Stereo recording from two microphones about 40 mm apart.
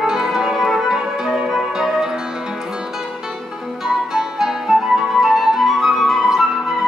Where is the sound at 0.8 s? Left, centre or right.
Centre.